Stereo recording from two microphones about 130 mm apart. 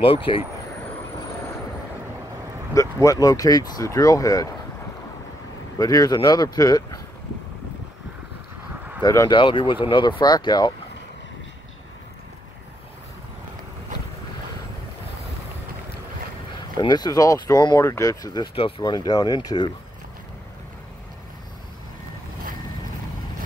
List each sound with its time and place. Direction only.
0.0 s speech: 45° left (ahead or behind)
2.7 s speech: 25° left (ahead or behind)
5.8 s speech: 30° left (ahead or behind)
9.0 s speech: 25° left (ahead or behind)
9.3 s speech: 40° left (ahead or behind)
16.8 s speech: 30° left (ahead or behind)